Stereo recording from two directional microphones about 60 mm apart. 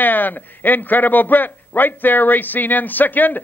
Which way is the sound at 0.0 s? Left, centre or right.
Left.